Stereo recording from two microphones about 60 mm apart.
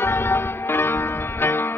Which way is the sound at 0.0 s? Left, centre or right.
Left.